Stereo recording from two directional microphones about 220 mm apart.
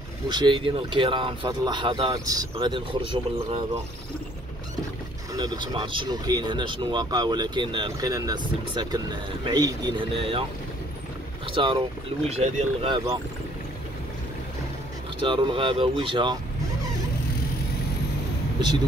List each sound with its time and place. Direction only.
0.3 s speech: 20° right (ahead or behind)
5.3 s speech: 20° right (ahead or behind)
11.5 s speech: 25° right (ahead or behind)
15.2 s speech: 20° right (ahead or behind)